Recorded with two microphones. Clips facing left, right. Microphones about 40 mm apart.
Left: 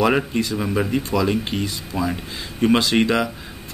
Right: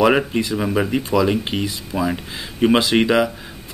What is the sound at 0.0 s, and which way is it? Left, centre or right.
Speech, centre.